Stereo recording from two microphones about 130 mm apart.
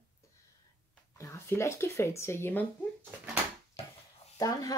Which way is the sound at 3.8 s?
50° left (ahead or behind).